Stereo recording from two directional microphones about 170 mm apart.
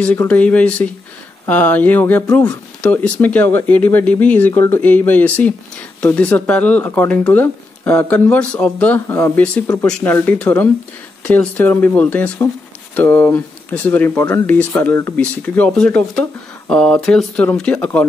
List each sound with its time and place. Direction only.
0.0 s speech: 10° left (ahead or behind)
9.1 s speech: 20° left (ahead or behind)
9.8 s speech: 10° left (ahead or behind)